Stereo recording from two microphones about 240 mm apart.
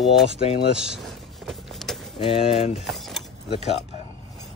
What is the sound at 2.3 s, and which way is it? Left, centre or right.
Speech, left.